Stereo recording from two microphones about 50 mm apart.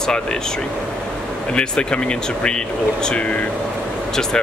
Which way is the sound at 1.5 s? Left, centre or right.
Centre.